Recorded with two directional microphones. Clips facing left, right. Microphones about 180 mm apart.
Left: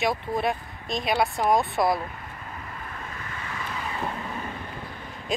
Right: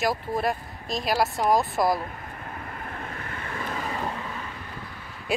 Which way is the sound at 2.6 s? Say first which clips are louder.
Right 2 dB; 55° right (ahead or behind).